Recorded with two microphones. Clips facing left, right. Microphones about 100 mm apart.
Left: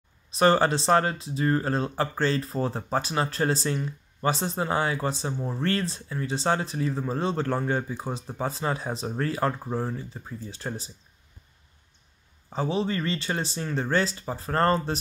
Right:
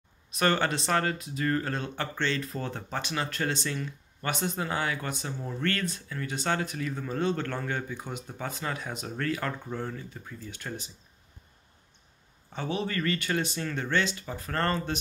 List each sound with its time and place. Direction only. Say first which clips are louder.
0.3 s speech: left 6 dB; 30° left (ahead or behind)
12.4 s speech: left 5 dB; 30° left (ahead or behind)